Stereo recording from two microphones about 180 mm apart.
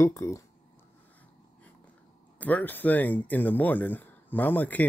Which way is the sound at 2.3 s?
10° left (ahead or behind).